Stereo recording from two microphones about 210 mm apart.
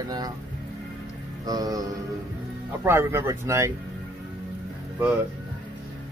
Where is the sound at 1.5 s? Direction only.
15° right (ahead or behind).